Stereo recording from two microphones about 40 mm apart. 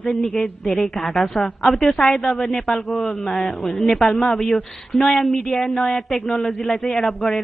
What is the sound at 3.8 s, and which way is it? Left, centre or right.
Speech, centre.